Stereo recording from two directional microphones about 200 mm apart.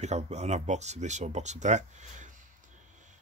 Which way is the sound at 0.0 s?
35° right (ahead or behind).